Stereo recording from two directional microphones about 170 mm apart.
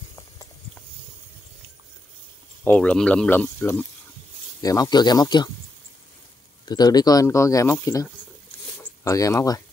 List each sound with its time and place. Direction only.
2.6 s speech: 10° left (ahead or behind)
4.6 s speech: 20° left (ahead or behind)
6.6 s speech: 25° left (ahead or behind)